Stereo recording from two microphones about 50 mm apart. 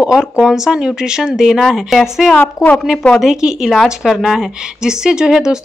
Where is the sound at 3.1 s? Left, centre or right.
Centre.